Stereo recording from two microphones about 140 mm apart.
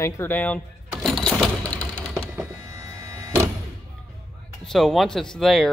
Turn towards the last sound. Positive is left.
turn(degrees=0)  # may be behind; listen again after turning